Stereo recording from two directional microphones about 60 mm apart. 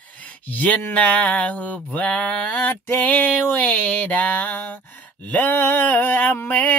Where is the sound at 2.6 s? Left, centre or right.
Left.